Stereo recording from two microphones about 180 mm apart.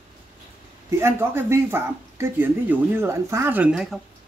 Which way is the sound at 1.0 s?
15° right (ahead or behind).